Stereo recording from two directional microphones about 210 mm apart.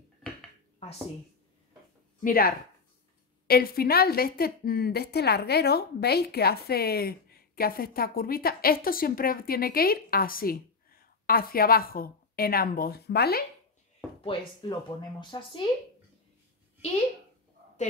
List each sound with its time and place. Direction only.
2.2 s a woman's voice: 45° left (ahead or behind)
14.2 s speech: 25° left (ahead or behind)